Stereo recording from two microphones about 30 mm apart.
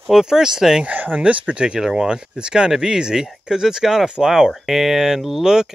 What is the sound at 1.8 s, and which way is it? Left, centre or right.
Speech, right.